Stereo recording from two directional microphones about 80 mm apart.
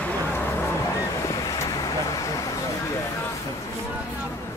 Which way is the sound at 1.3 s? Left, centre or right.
Left.